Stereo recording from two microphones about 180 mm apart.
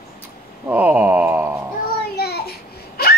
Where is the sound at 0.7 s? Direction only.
10° right (ahead or behind).